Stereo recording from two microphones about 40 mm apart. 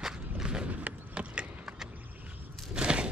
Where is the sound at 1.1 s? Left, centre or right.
Right.